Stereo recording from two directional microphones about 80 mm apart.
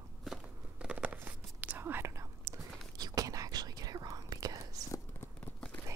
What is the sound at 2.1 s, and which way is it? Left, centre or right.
Whispering, right.